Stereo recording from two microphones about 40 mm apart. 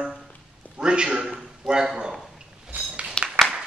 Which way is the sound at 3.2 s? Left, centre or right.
Left.